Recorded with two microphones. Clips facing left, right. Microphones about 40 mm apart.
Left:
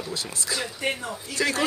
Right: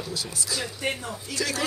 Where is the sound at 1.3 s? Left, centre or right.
Left.